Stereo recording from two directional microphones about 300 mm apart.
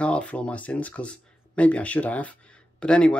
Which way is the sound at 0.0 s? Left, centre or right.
Centre.